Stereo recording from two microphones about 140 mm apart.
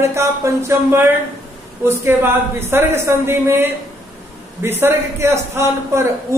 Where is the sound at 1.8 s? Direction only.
15° right (ahead or behind).